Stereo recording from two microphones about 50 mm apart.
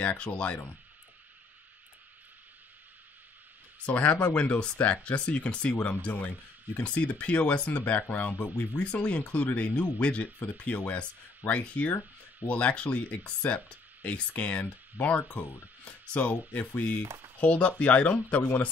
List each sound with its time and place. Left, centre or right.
0.2 s speech: left
3.8 s speech: left